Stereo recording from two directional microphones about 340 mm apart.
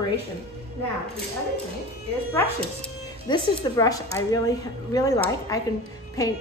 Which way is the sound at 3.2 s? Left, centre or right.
Centre.